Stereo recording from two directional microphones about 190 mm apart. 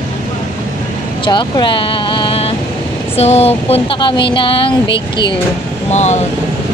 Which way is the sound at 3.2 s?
35° left (ahead or behind).